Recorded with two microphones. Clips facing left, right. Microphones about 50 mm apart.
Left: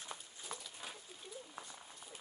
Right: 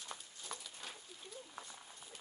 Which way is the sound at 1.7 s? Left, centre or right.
Centre.